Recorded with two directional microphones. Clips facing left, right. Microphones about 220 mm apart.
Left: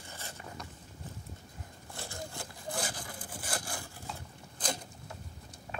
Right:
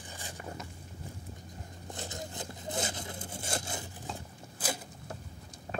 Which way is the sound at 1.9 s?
20° right (ahead or behind).